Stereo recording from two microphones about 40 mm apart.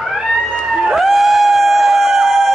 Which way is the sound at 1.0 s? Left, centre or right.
Centre.